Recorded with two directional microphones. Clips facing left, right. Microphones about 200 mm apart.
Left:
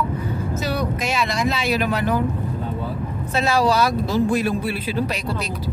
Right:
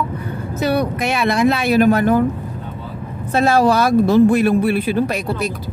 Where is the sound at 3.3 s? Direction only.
50° right (ahead or behind).